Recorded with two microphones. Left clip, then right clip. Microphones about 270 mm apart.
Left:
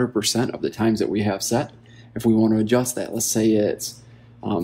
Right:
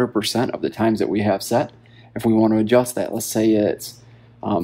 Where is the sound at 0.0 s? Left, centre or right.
Right.